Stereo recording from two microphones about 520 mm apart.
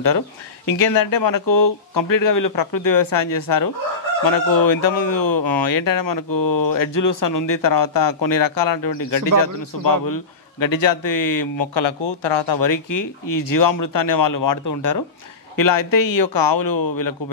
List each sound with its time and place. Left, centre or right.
0.7 s speech: left